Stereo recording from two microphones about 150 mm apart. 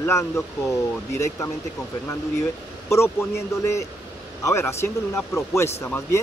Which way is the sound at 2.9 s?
15° left (ahead or behind).